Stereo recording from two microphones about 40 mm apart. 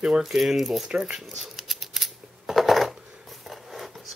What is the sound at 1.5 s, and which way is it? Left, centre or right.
Scissors, centre.